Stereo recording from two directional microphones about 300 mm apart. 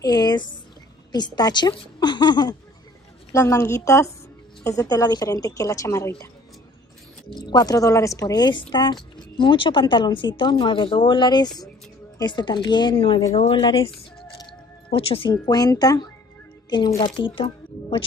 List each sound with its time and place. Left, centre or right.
0.0 s a sound: centre
1.1 s a woman's voice: centre
7.4 s a woman's voice: centre